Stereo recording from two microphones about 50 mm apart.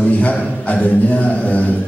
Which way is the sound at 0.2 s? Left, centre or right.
Left.